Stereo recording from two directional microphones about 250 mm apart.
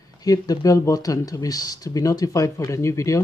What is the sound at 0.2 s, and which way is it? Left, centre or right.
Speech, centre.